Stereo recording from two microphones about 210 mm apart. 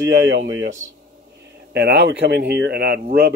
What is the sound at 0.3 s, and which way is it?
Speech, 60° right (ahead or behind).